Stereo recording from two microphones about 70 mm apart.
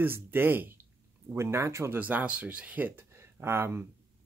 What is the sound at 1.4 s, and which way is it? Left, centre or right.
Speech, right.